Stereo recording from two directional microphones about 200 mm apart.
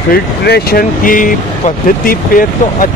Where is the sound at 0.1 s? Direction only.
50° left (ahead or behind).